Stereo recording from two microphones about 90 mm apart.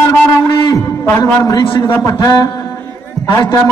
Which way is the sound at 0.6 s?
40° left (ahead or behind).